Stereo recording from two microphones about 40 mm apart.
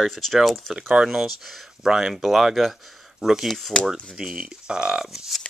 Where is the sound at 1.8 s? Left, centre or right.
Centre.